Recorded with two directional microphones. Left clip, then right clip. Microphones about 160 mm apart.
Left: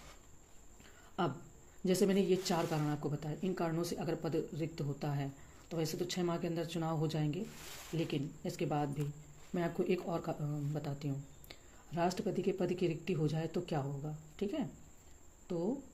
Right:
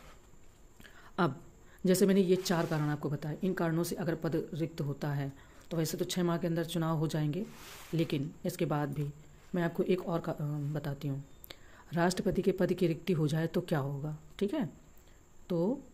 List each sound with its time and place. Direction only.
1.9 s speech: 40° right (ahead or behind)
9.5 s speech: 30° right (ahead or behind); by 15.7 s 50° right (ahead or behind)